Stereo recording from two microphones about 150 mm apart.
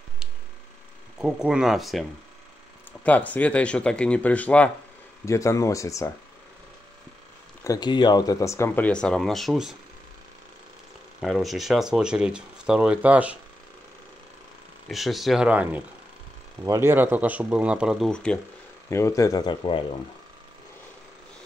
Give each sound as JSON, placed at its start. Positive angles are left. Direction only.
{"t": 1.1, "sound": "speech", "side_deg": -5}
{"t": 3.0, "sound": "speech", "side_deg": 10}
{"t": 5.2, "sound": "speech", "side_deg": 20}
{"t": 7.6, "sound": "speech", "side_deg": 25}
{"t": 11.1, "sound": "speech", "side_deg": 0}
{"t": 14.9, "sound": "speech", "side_deg": 0}
{"t": 18.9, "sound": "speech", "side_deg": 20}